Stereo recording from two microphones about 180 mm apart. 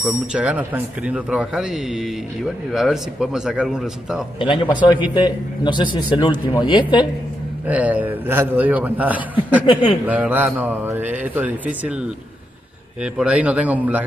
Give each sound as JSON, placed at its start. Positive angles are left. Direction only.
{"t": 0.3, "sound": "a man's voice", "side_deg": -5}
{"t": 4.4, "sound": "a man's voice", "side_deg": 25}
{"t": 7.6, "sound": "a man's voice", "side_deg": -10}